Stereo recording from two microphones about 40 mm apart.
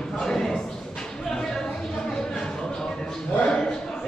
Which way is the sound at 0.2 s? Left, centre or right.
Centre.